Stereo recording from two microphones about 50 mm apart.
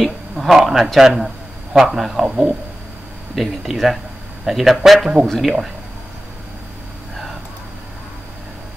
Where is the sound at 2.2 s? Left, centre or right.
Centre.